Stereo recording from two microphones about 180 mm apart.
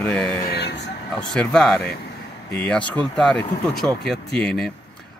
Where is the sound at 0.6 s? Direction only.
70° left (ahead or behind).